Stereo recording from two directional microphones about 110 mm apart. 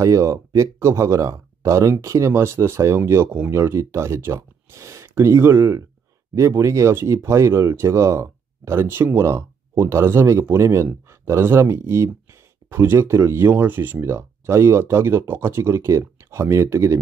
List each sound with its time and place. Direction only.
0.0 s speech: 30° right (ahead or behind)